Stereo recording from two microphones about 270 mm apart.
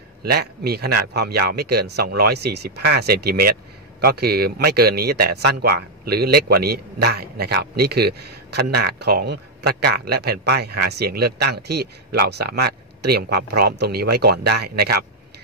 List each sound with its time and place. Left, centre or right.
0.2 s speech: right